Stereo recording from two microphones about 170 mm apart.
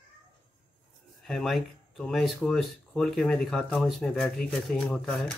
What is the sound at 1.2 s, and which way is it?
Speech, centre (ahead or behind).